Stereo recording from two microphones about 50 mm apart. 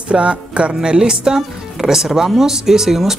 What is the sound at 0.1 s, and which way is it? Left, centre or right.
Speech, right.